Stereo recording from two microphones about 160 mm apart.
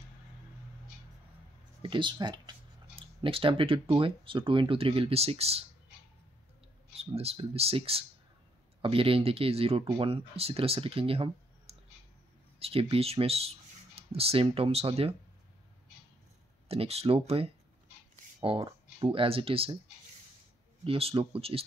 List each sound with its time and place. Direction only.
1.8 s speech: 30° right (ahead or behind)
7.0 s speech: 40° right (ahead or behind)
16.6 s speech: 40° right (ahead or behind)
20.8 s speech: 35° right (ahead or behind)